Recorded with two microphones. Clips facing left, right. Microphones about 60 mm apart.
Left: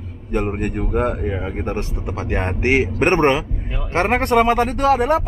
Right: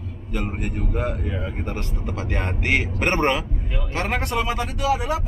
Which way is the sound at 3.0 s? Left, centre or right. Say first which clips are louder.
Left 6 dB; left.